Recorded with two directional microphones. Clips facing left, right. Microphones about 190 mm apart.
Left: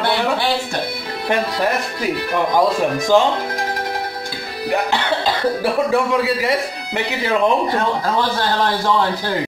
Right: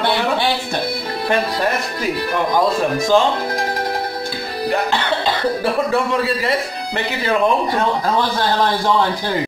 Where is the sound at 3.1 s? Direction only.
15° left (ahead or behind).